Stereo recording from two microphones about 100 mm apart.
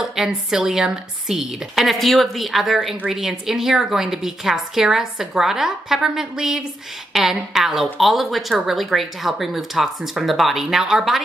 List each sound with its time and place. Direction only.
0.0 s a woman's voice: 5° right (ahead or behind)